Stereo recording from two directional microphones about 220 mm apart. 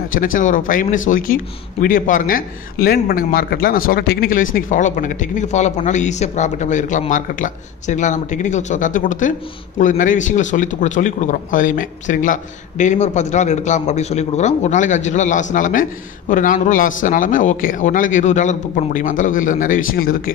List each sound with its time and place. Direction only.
0.1 s a man's voice: 40° left (ahead or behind)